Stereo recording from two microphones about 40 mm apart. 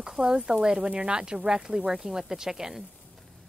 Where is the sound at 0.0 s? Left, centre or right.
Centre.